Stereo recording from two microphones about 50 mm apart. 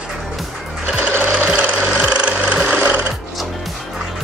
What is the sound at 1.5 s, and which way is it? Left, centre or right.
Jackhammer, right.